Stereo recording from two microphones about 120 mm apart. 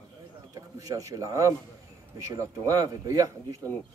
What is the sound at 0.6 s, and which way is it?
Speech, 30° right (ahead or behind).